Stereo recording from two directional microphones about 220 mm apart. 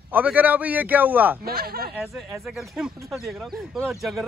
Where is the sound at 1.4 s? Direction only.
45° right (ahead or behind).